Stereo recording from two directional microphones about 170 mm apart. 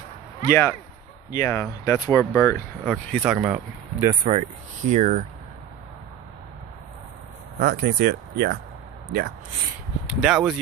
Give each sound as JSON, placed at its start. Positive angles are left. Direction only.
{"t": 0.5, "sound": "speech", "side_deg": 15}
{"t": 2.8, "sound": "speech", "side_deg": 0}
{"t": 3.3, "sound": "speech", "side_deg": -15}
{"t": 4.2, "sound": "speech", "side_deg": -35}
{"t": 7.5, "sound": "speech", "side_deg": -60}
{"t": 10.0, "sound": "speech", "side_deg": -5}